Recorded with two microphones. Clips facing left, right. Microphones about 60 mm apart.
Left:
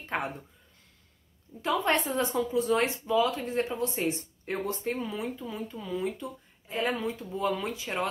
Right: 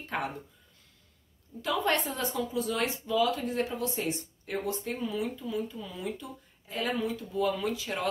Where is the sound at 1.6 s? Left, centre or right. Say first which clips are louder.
Left 2 dB; left.